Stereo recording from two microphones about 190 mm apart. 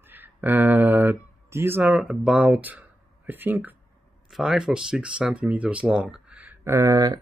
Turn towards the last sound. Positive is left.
turn(degrees=-20)  # may be behind; listen again after turning